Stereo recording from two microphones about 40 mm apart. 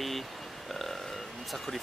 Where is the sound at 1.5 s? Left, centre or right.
Centre.